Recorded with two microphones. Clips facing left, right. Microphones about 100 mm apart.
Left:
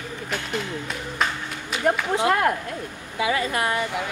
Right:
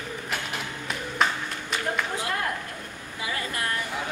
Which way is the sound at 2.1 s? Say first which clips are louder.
Left 9 dB; 70° left (ahead or behind).